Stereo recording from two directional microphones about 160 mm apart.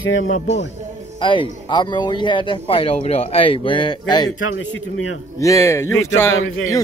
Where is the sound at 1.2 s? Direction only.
30° left (ahead or behind).